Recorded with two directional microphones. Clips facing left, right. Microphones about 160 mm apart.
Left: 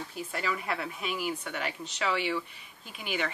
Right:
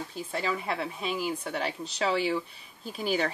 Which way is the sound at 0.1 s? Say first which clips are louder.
Right 2 dB; 30° right (ahead or behind).